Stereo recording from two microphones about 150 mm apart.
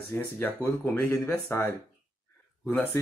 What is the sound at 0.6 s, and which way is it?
Speech, 15° left (ahead or behind).